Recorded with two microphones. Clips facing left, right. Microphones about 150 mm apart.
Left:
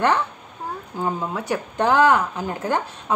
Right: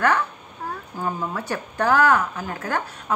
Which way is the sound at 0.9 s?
20° left (ahead or behind).